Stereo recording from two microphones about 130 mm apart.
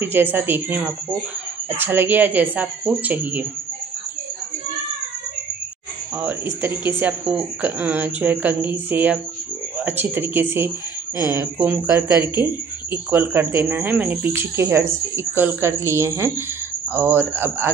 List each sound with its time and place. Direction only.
0.0 s speech: 15° right (ahead or behind)
6.2 s speech: 20° right (ahead or behind)